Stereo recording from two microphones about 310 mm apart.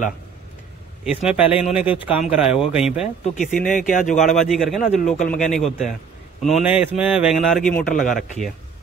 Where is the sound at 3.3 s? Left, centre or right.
Left.